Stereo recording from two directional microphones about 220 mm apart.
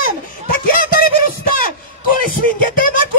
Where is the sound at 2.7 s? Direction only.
40° left (ahead or behind).